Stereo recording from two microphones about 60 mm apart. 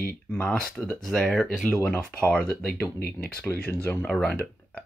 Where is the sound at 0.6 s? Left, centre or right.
Centre.